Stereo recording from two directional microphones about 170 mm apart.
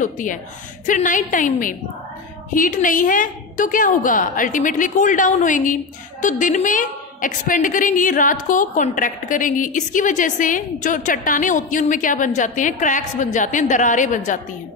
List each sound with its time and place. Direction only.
0.0 s a woman's voice: 50° left (ahead or behind)